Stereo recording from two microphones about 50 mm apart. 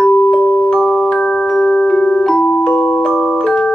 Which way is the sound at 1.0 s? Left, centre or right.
Centre.